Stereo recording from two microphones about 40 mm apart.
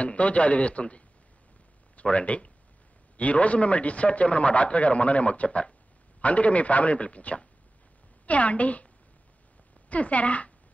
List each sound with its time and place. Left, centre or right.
0.0 s a man's voice: left
9.8 s a man's voice: left